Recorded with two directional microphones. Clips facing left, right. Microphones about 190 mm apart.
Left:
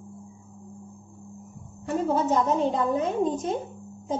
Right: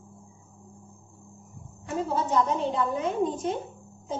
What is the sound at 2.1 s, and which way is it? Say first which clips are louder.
Speech: left 2 dB; 45° left (ahead or behind).